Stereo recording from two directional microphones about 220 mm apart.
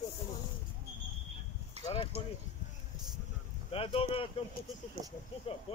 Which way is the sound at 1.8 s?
30° right (ahead or behind).